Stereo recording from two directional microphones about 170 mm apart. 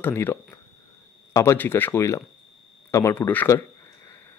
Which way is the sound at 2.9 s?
15° left (ahead or behind).